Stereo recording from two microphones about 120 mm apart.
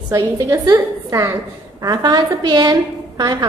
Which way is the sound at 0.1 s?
30° right (ahead or behind).